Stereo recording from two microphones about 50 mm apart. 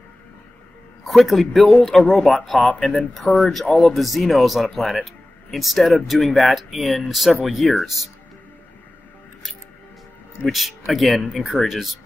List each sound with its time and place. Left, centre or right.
1.0 s speech: centre
2.7 s speech: left
3.3 s speech: centre
10.4 s speech: centre